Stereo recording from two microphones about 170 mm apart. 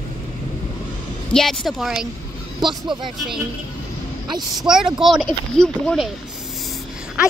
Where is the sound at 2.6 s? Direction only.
25° right (ahead or behind).